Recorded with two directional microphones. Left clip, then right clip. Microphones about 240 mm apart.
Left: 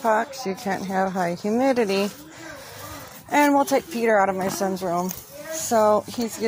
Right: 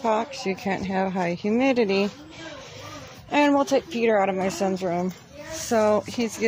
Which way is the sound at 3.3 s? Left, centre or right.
Centre.